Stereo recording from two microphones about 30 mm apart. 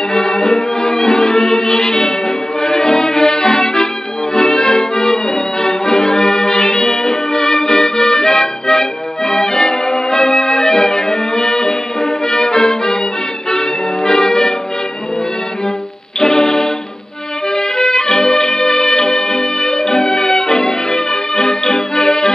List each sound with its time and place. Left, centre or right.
0.1 s music: left
16.2 s music: centre
22.0 s accordion: centre